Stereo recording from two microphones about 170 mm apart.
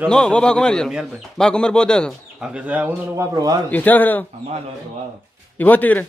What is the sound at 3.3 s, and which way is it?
Speech, 20° right (ahead or behind).